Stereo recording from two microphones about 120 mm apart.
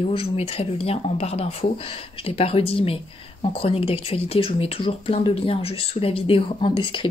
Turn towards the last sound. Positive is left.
turn(degrees=45)  # may be behind; listen again after turning